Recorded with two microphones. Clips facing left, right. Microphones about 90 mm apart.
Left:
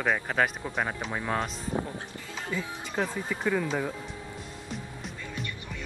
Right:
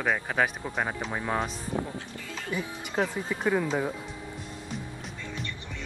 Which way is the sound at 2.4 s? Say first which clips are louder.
Right 1 dB; 20° right (ahead or behind).